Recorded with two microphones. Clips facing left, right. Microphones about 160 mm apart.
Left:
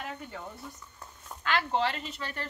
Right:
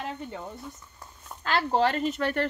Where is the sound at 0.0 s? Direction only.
20° right (ahead or behind).